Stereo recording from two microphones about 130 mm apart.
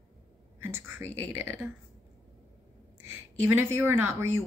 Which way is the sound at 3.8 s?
20° right (ahead or behind).